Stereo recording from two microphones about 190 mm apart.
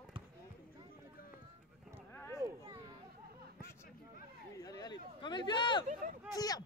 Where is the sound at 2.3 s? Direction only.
15° right (ahead or behind).